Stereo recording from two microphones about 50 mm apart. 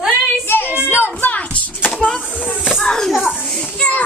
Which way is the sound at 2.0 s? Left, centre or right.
Centre.